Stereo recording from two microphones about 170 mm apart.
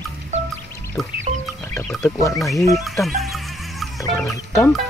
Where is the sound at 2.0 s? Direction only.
20° left (ahead or behind).